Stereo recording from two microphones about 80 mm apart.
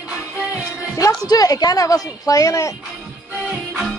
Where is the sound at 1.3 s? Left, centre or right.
Left.